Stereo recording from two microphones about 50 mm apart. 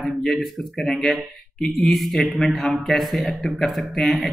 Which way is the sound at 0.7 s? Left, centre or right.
Centre.